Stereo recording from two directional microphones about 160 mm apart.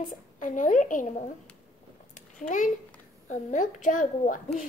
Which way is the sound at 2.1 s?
55° left (ahead or behind).